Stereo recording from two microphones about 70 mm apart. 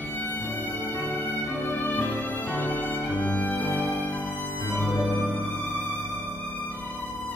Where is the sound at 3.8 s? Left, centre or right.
Right.